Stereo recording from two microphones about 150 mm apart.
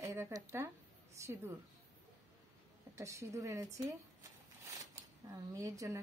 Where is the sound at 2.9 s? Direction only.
20° right (ahead or behind).